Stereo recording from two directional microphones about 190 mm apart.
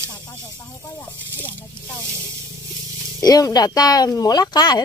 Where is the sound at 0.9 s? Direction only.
10° left (ahead or behind).